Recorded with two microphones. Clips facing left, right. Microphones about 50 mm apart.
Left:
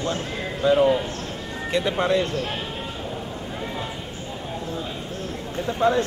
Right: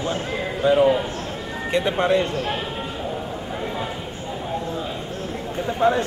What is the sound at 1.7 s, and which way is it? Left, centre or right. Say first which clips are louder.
Speech: right 2 dB; right.